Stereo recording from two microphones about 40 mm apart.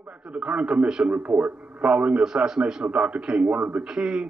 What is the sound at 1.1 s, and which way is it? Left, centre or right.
Speech, right.